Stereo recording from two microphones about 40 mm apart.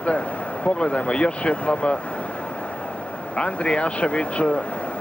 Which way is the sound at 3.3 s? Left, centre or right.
Left.